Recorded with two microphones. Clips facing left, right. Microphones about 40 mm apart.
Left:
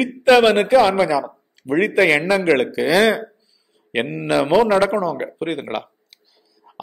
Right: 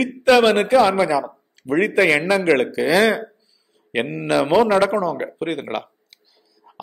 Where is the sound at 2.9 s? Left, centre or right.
Left.